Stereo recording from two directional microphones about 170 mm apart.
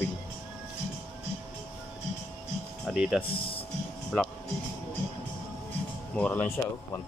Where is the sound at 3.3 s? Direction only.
30° left (ahead or behind).